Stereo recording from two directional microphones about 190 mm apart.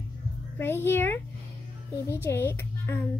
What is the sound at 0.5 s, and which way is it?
A child's voice, 10° left (ahead or behind).